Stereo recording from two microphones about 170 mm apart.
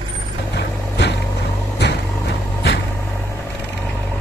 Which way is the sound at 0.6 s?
85° left.